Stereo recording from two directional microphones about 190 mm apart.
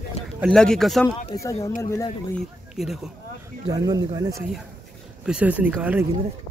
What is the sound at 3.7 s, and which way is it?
Speech, 20° right (ahead or behind).